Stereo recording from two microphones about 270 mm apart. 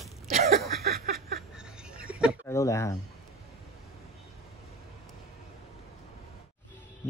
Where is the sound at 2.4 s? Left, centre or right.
Centre.